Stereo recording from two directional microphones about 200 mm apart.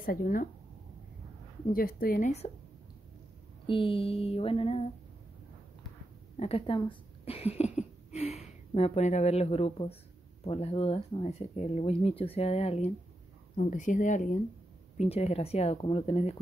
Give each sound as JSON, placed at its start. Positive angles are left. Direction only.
{"t": 0.0, "sound": "a woman's voice", "side_deg": 45}
{"t": 1.7, "sound": "a woman's voice", "side_deg": 45}
{"t": 3.6, "sound": "speech", "side_deg": 25}
{"t": 6.3, "sound": "speech", "side_deg": 30}